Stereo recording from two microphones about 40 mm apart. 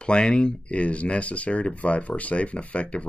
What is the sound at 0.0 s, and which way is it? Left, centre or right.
Speech, left.